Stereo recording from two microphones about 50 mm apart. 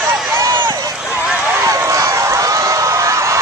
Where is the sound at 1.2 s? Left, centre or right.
Right.